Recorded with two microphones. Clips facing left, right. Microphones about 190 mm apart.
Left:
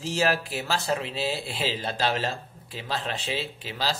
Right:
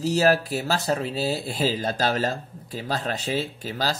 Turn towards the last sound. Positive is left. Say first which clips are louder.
# right 3 dB
turn(degrees=-45)  # may be behind; listen again after turning